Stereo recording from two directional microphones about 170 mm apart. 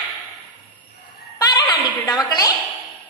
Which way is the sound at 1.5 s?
25° left (ahead or behind).